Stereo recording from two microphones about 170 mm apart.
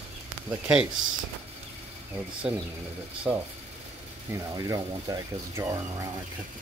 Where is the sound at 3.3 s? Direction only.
5° left (ahead or behind).